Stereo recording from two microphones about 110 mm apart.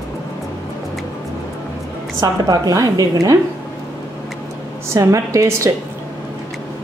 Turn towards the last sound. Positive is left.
turn(degrees=-30)  # may be behind; listen again after turning